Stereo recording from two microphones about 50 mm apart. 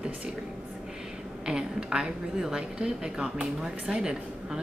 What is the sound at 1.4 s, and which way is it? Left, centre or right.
A woman's voice, centre.